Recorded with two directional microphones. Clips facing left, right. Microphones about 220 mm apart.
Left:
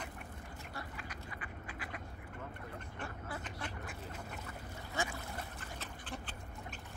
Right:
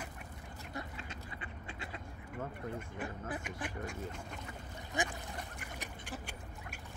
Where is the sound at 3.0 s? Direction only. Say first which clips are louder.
Right 4 dB; 15° right (ahead or behind).